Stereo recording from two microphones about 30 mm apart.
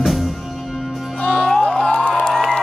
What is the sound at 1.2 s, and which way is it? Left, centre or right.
Music, left.